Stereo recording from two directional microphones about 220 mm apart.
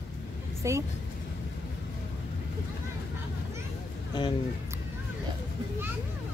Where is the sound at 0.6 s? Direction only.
10° right (ahead or behind).